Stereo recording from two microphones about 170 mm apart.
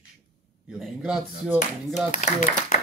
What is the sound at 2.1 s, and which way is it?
Speech, 45° left (ahead or behind).